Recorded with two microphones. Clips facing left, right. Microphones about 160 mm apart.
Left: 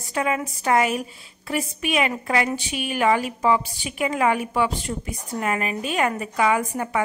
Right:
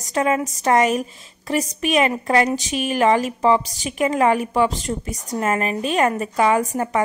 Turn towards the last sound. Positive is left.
turn(degrees=-40)  # may be behind; listen again after turning